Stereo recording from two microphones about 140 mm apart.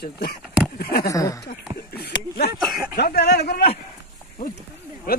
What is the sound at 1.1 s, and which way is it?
Speech, 25° left (ahead or behind).